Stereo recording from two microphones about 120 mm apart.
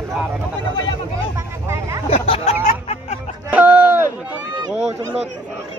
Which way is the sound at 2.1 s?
65° left (ahead or behind).